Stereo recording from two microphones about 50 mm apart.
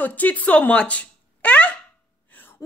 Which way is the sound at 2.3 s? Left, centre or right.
Left.